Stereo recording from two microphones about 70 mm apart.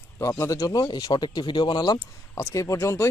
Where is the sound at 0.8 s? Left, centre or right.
Left.